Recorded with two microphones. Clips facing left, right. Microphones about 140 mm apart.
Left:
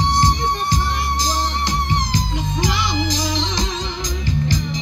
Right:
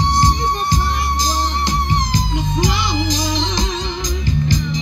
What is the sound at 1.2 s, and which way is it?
Music, 15° right (ahead or behind).